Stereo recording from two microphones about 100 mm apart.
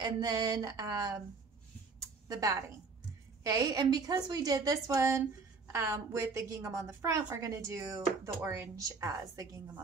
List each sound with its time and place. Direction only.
0.0 s a woman's voice: 45° right (ahead or behind)
2.2 s a woman's voice: 35° right (ahead or behind)